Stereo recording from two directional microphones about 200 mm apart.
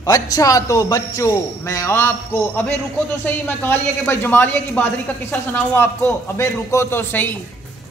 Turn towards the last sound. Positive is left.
turn(degrees=10)  # may be behind; listen again after turning